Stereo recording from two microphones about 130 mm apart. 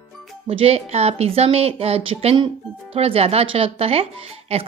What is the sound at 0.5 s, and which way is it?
Speech, 50° right (ahead or behind).